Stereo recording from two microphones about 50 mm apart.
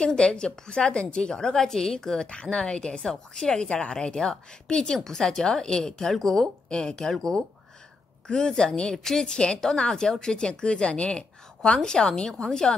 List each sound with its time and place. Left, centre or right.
0.0 s a woman's voice: centre